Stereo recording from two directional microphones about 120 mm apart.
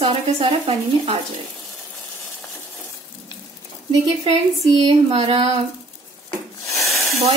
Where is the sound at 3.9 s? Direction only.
35° right (ahead or behind).